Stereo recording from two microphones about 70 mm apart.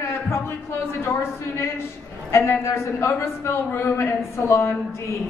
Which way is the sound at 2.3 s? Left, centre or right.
Left.